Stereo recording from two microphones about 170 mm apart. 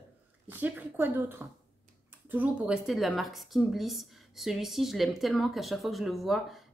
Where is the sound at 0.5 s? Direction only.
10° right (ahead or behind).